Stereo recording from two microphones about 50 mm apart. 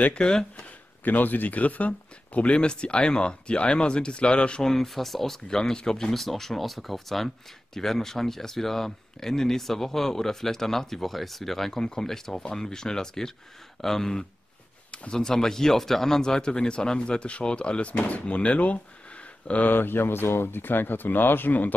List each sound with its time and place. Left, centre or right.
0.0 s speech: centre
1.0 s speech: left
4.6 s speech: centre; by 19.7 s left
19.7 s speech: left